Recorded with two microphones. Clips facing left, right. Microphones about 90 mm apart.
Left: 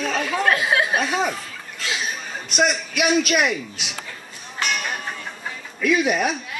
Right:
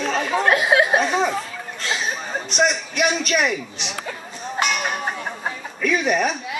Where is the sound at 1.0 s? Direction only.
5° left (ahead or behind).